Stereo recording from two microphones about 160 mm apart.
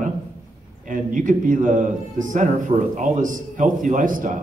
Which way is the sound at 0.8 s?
55° right (ahead or behind).